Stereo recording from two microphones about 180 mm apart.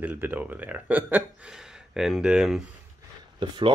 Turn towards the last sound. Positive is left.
turn(degrees=-25)  # may be behind; listen again after turning